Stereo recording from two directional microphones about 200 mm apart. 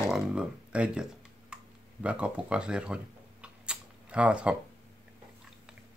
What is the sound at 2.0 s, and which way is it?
Camera, 5° right (ahead or behind).